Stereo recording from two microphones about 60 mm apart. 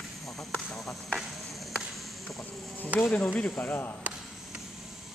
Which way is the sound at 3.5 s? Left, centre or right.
Left.